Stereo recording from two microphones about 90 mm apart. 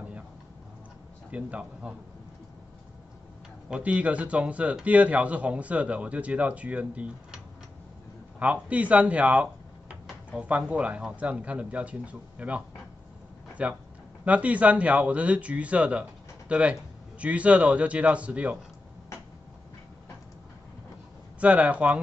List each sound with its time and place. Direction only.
1.3 s a man's voice: 15° right (ahead or behind)
3.6 s a man's voice: 15° right (ahead or behind)
8.4 s a man's voice: 15° right (ahead or behind)
21.4 s a man's voice: 15° right (ahead or behind)